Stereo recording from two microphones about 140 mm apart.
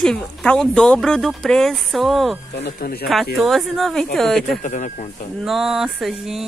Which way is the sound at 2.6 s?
90° left.